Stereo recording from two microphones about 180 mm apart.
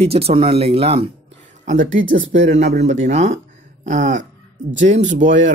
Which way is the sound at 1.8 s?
90° right.